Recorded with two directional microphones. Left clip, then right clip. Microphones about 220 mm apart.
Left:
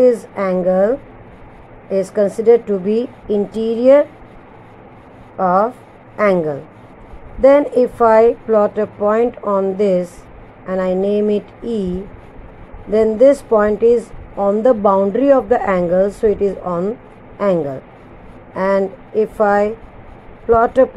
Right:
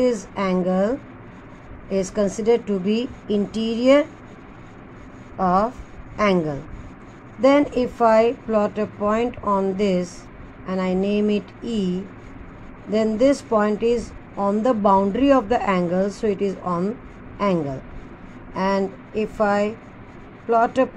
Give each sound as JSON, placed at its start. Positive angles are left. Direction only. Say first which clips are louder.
{"t": 0.0, "sound": "a woman's voice", "louder": "left 8 dB", "side_deg": 5}
{"t": 5.4, "sound": "a woman's voice", "louder": "left 5 dB", "side_deg": 10}